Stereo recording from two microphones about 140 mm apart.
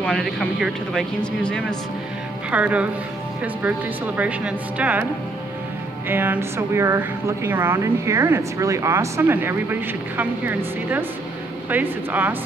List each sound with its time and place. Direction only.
0.0 s speech: centre (ahead or behind)
2.5 s speech: 10° right (ahead or behind)
4.2 s speech: 10° right (ahead or behind)
6.0 s speech: 15° right (ahead or behind)